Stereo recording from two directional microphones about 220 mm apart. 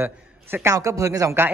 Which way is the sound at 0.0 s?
10° right (ahead or behind).